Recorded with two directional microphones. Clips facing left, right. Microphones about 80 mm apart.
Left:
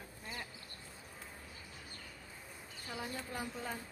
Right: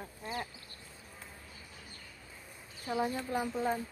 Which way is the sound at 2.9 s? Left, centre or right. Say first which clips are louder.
Right 10 dB; right.